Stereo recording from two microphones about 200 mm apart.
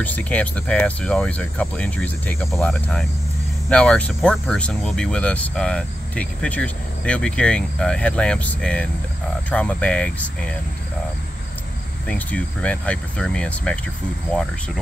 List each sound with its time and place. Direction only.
0.0 s speech: 5° left (ahead or behind)
12.1 s speech: 5° left (ahead or behind)